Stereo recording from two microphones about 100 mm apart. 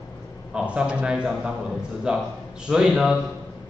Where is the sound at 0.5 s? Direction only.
10° right (ahead or behind).